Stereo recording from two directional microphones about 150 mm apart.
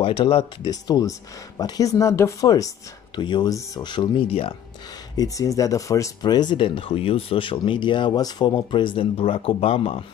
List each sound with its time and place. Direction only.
0.0 s speech: 35° left (ahead or behind)
5.1 s speech: 25° left (ahead or behind); by 10.0 s 40° left (ahead or behind)